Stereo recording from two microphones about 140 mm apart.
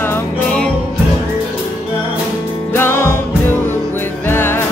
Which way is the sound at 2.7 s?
20° left (ahead or behind).